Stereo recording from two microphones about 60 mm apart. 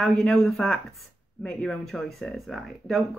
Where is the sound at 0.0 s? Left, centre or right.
Centre.